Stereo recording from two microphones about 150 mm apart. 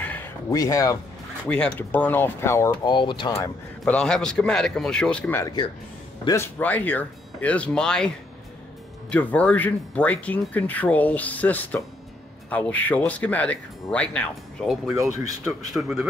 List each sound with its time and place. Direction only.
0.0 s a sound: 10° left (ahead or behind)
0.5 s speech: 25° left (ahead or behind)
1.5 s speech: 10° left (ahead or behind)
2.9 s speech: 30° left (ahead or behind)
3.8 s speech: 5° left (ahead or behind)
5.4 s speech: 25° left (ahead or behind)
6.2 s speech: 15° left (ahead or behind)
9.1 s speech: 10° left (ahead or behind)